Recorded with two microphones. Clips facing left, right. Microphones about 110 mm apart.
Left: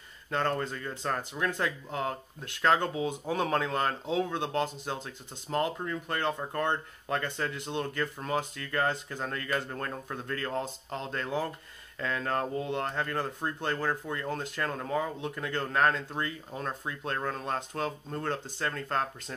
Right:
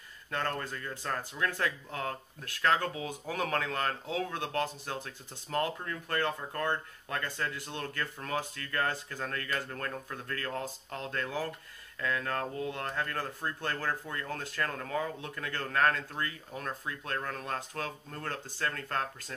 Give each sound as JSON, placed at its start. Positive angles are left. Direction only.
{"t": 0.3, "sound": "speech", "side_deg": 25}